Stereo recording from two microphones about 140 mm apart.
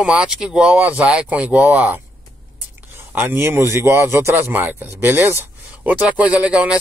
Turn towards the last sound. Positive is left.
turn(degrees=-10)  # may be behind; listen again after turning